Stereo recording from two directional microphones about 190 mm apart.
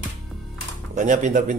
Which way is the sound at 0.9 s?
40° right (ahead or behind).